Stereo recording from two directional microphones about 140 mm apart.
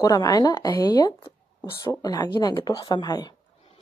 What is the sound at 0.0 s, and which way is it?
A woman's voice, 25° left (ahead or behind).